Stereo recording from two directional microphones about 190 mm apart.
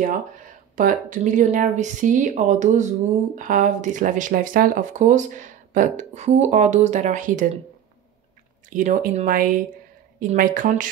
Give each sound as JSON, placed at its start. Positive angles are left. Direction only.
{"t": 0.7, "sound": "speech", "side_deg": -45}
{"t": 8.6, "sound": "speech", "side_deg": -45}